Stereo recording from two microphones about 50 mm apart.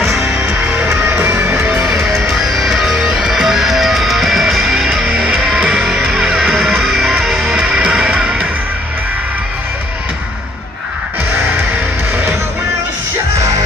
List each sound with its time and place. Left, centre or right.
0.5 s music: right
1.0 s music: right
1.9 s music: centre
7.6 s music: centre